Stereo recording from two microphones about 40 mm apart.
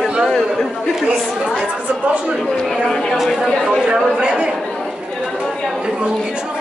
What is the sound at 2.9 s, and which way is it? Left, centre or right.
Speech, centre.